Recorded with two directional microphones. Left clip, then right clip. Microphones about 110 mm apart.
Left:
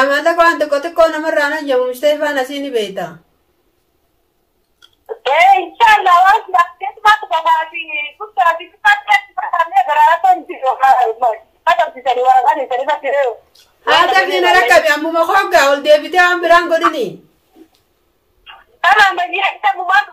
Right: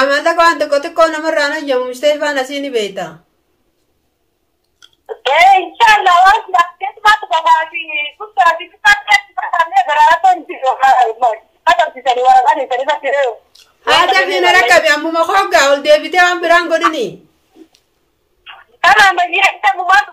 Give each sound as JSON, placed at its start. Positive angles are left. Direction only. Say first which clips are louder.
{"t": 0.0, "sound": "speech", "louder": "right 1 dB", "side_deg": -25}
{"t": 5.0, "sound": "a woman's voice", "louder": "right 1 dB", "side_deg": -10}
{"t": 14.3, "sound": "speech", "louder": "right 2 dB", "side_deg": -25}
{"t": 18.4, "sound": "a woman's voice", "louder": "right 2 dB", "side_deg": -20}